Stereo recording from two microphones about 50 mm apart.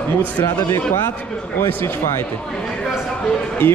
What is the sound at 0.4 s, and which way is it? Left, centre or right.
Speech, left.